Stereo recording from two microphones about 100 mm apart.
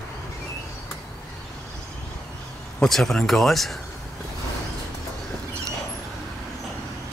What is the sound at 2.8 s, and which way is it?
Speech, 5° left (ahead or behind).